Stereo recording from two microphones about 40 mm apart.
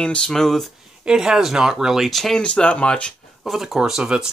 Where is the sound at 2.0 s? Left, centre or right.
Centre.